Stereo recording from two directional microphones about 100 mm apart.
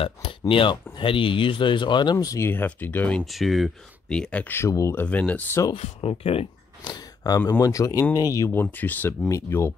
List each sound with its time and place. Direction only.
0.0 s speech: 65° left (ahead or behind); by 2.4 s 35° left (ahead or behind)
2.4 s speech: 20° left (ahead or behind)
3.3 s speech: centre (ahead or behind)
4.1 s speech: 10° left (ahead or behind)
4.6 s speech: 30° left (ahead or behind)
5.0 s speech: 15° left (ahead or behind)
5.8 s speech: 80° left
6.8 s speech: 40° left (ahead or behind)
8.5 s speech: 20° left (ahead or behind)